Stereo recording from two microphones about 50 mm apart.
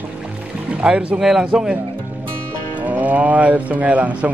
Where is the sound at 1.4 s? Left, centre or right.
Right.